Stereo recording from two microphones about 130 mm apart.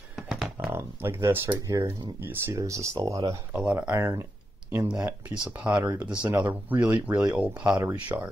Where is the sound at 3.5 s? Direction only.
10° right (ahead or behind).